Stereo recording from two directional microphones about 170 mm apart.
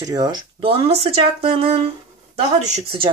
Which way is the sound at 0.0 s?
20° right (ahead or behind).